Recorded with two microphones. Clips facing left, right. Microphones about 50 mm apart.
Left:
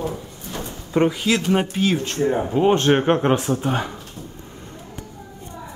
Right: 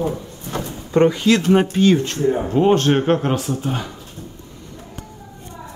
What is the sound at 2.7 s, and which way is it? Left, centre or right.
Speech, centre.